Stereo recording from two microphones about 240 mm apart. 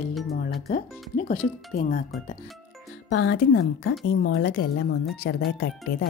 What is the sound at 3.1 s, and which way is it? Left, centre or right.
A woman's voice, left.